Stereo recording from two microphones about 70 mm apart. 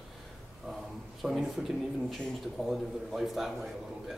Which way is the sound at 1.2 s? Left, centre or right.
Centre.